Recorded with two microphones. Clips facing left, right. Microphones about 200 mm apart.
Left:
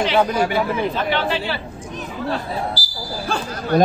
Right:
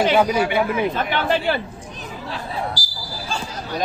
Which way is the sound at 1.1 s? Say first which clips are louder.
Right 2 dB; 50° right (ahead or behind).